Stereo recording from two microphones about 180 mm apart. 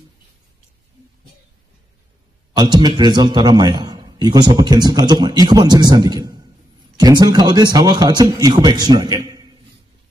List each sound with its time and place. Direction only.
2.5 s a man's voice: 20° right (ahead or behind)